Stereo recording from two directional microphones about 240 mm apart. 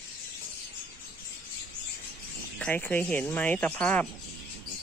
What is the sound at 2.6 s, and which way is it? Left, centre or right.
Speech, centre.